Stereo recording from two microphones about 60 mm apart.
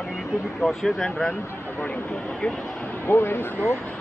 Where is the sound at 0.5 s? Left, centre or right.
Centre.